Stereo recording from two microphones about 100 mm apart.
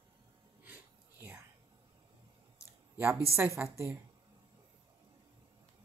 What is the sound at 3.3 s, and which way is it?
Speech, 25° right (ahead or behind).